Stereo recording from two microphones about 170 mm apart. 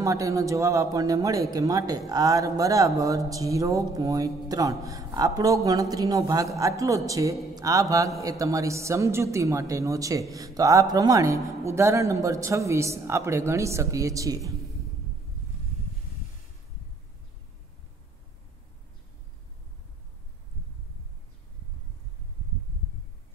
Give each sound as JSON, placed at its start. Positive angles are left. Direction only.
{"t": 0.0, "sound": "speech", "side_deg": -20}